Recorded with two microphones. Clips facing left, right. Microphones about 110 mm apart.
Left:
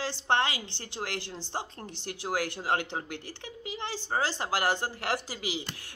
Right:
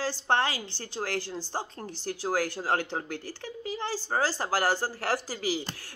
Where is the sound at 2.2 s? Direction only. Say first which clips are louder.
Right 2 dB; 35° right (ahead or behind).